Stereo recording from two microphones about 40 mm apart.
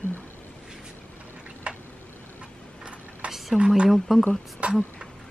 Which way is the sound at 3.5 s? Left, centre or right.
Right.